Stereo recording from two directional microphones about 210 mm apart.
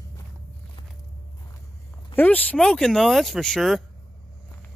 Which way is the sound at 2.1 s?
10° left (ahead or behind).